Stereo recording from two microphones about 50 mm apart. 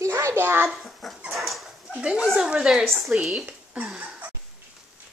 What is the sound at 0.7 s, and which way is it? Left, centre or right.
Speech, centre.